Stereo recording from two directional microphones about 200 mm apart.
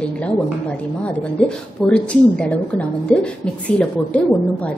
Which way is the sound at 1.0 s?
5° left (ahead or behind).